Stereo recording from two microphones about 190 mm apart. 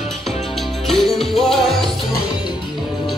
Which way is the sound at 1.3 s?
Centre (ahead or behind).